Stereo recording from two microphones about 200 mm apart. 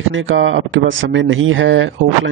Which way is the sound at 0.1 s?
75° right (ahead or behind).